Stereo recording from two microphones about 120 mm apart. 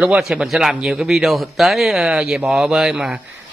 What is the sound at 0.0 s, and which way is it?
A man's voice, 5° right (ahead or behind).